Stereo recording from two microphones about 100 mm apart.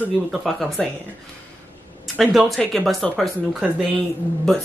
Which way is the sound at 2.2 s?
5° right (ahead or behind).